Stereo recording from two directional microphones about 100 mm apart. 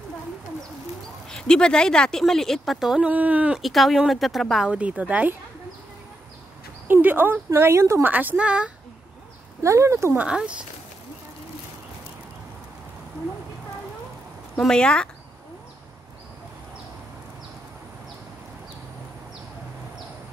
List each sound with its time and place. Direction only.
1.3 s speech: 10° left (ahead or behind)
3.1 s a woman's voice: 15° right (ahead or behind)
3.5 s speech: centre (ahead or behind)
4.7 s a woman's voice: 15° right (ahead or behind)
6.9 s speech: 20° right (ahead or behind)
9.6 s speech: 30° right (ahead or behind)
10.1 s a woman's voice: 10° right (ahead or behind)
14.6 s speech: 5° left (ahead or behind)